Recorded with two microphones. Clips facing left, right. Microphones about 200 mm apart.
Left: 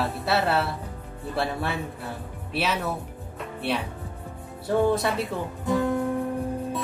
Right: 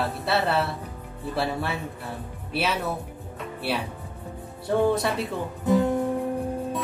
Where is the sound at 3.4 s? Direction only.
5° right (ahead or behind).